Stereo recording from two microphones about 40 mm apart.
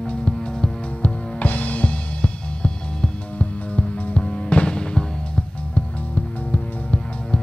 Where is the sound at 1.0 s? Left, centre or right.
Left.